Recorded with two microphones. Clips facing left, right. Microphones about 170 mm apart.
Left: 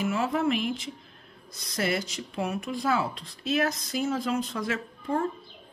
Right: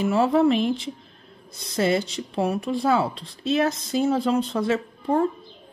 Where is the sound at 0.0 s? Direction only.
30° right (ahead or behind).